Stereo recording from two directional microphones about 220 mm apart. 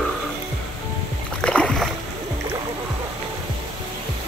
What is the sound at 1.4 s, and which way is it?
Rowboat, 5° left (ahead or behind).